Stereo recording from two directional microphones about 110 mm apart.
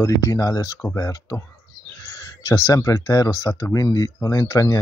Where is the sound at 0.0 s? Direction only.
30° left (ahead or behind).